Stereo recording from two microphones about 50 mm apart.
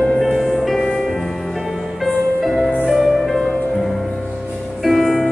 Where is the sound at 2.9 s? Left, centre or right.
Centre.